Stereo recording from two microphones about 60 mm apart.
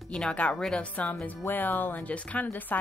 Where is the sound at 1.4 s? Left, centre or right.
Left.